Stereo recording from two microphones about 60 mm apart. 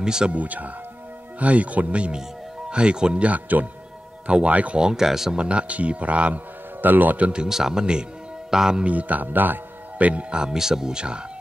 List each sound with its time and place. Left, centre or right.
0.0 s speech: centre
0.3 s speech: right
3.3 s speech: right
4.7 s speech: centre
5.4 s a man's voice: centre
7.4 s speech: centre
8.8 s speech: right